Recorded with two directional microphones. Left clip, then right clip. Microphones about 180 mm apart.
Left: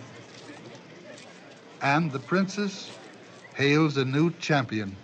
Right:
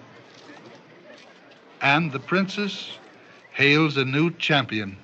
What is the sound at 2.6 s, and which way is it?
Speech, 25° left (ahead or behind).